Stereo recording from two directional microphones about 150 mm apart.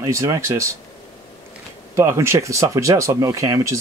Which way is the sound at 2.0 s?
20° right (ahead or behind).